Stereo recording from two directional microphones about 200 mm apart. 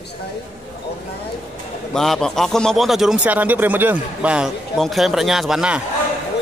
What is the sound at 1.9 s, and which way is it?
A man's voice, centre (ahead or behind).